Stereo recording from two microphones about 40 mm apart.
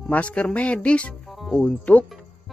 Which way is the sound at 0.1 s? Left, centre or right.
Left.